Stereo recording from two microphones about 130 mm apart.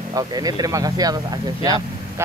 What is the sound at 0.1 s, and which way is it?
Speech, 30° right (ahead or behind).